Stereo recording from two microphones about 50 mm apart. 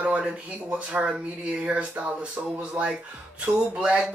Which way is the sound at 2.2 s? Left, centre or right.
Right.